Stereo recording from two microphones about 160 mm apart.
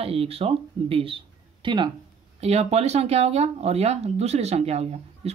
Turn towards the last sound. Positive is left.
turn(degrees=-40)  # may be behind; listen again after turning